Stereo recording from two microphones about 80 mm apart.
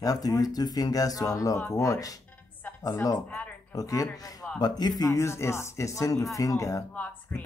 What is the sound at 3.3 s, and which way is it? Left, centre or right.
Speech, centre.